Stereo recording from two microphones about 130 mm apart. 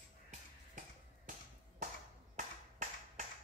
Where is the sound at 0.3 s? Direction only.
70° right (ahead or behind).